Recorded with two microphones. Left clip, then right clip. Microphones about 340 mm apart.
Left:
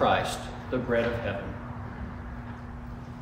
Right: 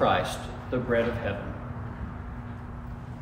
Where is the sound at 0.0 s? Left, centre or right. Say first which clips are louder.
Even; centre.